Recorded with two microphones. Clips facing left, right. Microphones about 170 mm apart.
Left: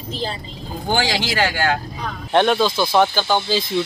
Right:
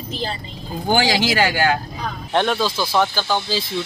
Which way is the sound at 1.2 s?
10° right (ahead or behind).